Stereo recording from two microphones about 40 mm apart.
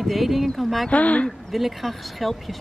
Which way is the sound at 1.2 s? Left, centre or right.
Centre.